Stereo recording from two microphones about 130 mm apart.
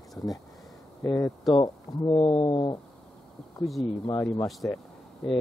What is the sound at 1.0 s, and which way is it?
Speech, 25° left (ahead or behind).